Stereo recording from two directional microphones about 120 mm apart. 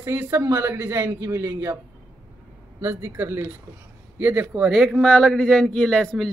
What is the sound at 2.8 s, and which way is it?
Speech, 20° right (ahead or behind).